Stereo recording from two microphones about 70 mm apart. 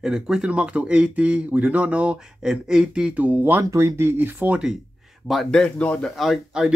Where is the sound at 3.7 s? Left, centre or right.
Right.